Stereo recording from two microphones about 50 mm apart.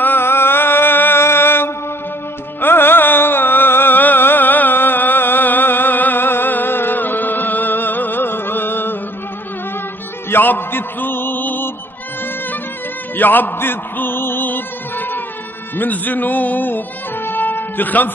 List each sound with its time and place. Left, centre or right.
0.0 s mantra: left
2.6 s music: left
10.3 s a sound: left
13.1 s music: left